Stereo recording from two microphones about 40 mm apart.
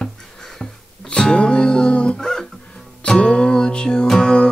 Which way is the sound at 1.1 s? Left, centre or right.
Left.